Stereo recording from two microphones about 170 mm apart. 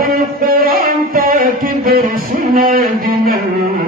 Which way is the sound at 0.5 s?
60° right (ahead or behind).